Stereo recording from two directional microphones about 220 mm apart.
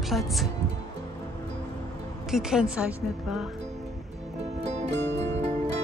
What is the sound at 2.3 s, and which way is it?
Speech, 5° right (ahead or behind).